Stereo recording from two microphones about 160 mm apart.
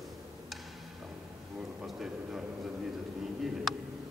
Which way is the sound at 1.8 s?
5° right (ahead or behind).